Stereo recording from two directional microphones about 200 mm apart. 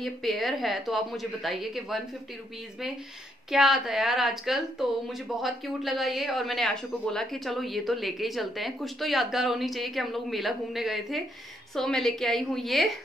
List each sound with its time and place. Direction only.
0.0 s a woman's voice: centre (ahead or behind)
3.5 s a woman's voice: centre (ahead or behind)